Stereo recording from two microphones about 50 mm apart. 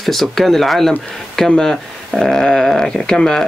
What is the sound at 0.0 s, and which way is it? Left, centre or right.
Speech, centre.